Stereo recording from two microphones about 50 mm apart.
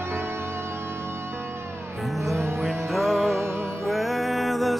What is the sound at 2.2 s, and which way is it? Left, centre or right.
Music, right.